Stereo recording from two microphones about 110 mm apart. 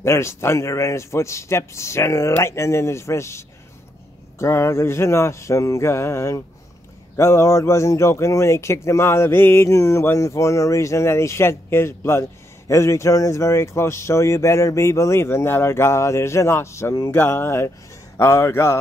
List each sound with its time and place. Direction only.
0.0 s speech: 25° left (ahead or behind)
17.1 s speech: 20° left (ahead or behind)